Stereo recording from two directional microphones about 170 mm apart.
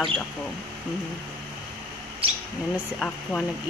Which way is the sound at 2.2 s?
35° right (ahead or behind).